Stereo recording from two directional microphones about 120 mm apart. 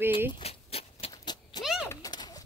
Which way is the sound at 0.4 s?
55° left (ahead or behind).